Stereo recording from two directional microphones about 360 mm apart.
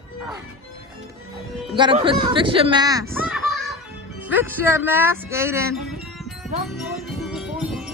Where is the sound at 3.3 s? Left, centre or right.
Centre.